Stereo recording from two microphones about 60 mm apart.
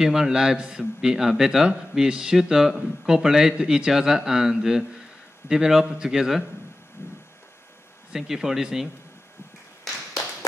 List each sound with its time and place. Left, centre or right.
0.0 s a man's voice: centre
7.0 s a sound: left
8.1 s a man's voice: centre